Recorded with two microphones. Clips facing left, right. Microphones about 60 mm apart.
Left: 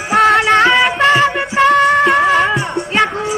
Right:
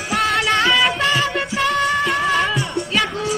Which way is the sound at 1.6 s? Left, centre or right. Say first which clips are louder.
Left 9 dB; left.